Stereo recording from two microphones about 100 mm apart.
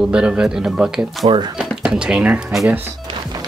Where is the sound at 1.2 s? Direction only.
90° right.